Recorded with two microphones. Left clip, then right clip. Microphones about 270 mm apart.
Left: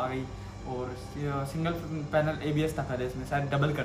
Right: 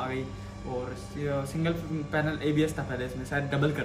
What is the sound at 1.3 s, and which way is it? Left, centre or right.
A man's voice, centre.